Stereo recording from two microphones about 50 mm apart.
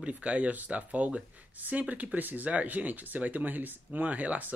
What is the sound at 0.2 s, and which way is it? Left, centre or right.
Speech, right.